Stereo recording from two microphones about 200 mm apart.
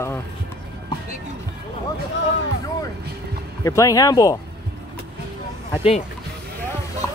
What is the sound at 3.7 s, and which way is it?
Speech, 15° left (ahead or behind).